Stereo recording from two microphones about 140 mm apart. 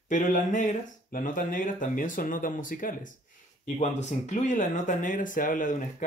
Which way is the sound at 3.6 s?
55° left (ahead or behind).